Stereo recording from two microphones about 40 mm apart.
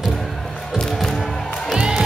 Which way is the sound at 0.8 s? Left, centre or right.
Centre.